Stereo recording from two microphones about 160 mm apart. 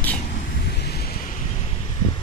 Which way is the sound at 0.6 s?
85° left.